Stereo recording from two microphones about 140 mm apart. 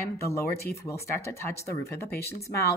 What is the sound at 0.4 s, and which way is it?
Speech, 90° left.